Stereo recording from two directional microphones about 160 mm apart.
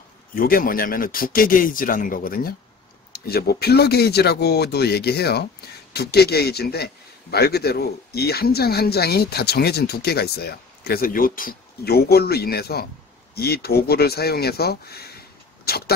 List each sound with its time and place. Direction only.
0.3 s speech: 65° left (ahead or behind)
3.1 s speech: 75° left (ahead or behind)